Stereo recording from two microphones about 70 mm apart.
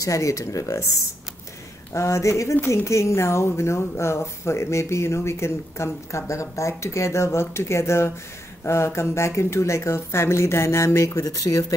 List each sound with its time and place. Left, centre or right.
0.0 s speech: left
2.0 s a woman's voice: left